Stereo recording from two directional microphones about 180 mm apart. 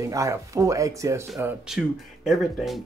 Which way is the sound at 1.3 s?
5° right (ahead or behind).